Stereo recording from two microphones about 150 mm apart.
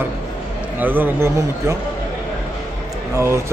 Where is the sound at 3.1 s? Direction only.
20° right (ahead or behind).